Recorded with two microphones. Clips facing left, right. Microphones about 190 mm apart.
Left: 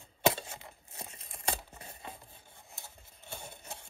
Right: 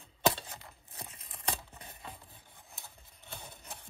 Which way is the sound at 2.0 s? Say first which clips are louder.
Left 1 dB; 15° left (ahead or behind).